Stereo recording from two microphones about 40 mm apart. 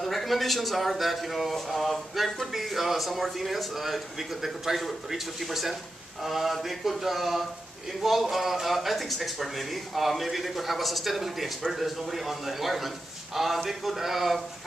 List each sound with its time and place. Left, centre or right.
0.0 s a man's voice: centre